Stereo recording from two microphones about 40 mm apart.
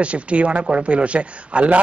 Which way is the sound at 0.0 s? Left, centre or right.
Right.